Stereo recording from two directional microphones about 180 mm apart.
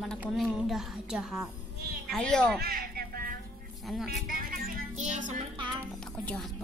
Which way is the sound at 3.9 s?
Centre (ahead or behind).